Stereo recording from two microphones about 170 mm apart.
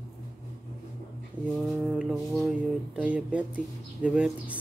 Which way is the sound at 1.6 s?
5° right (ahead or behind).